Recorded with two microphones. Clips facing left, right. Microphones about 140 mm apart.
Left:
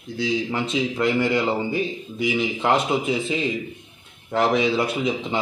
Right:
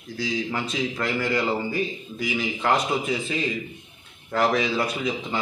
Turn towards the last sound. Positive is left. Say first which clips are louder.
# left 3 dB
turn(degrees=25)  # may be behind; listen again after turning